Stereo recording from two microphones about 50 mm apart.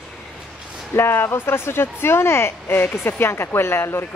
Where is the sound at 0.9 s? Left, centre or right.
Left.